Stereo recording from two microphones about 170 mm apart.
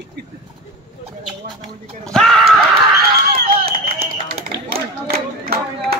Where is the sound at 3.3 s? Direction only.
60° right (ahead or behind).